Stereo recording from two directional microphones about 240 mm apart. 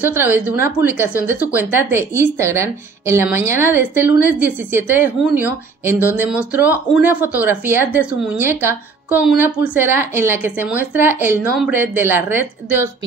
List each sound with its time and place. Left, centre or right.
0.0 s a woman's voice: centre